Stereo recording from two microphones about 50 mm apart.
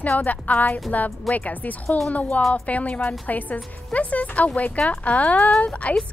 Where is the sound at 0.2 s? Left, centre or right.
Left.